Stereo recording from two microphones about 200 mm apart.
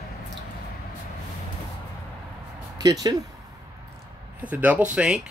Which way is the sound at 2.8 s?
20° right (ahead or behind).